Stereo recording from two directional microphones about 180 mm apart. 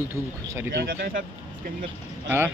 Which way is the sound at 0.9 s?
50° right (ahead or behind).